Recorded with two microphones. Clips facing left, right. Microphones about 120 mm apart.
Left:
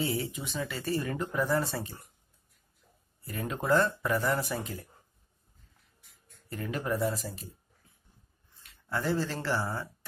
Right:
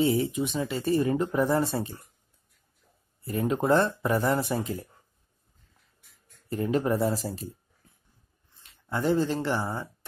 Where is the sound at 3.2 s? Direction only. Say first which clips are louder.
Right 5 dB; 25° right (ahead or behind).